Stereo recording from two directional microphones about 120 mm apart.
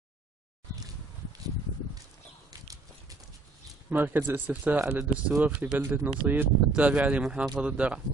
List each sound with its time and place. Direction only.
2.5 s horse: 30° right (ahead or behind)
3.9 s speech: 15° right (ahead or behind)